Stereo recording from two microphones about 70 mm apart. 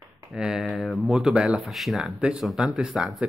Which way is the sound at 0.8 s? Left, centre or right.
Centre.